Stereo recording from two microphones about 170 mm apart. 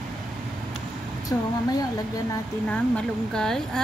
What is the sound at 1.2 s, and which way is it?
Speech, 20° left (ahead or behind).